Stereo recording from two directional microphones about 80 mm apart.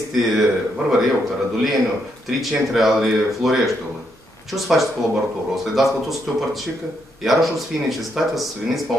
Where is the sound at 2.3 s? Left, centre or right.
Centre.